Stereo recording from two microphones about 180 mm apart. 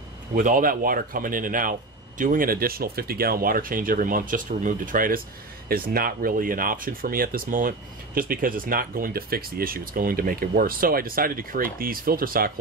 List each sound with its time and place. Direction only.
0.3 s speech: 50° right (ahead or behind)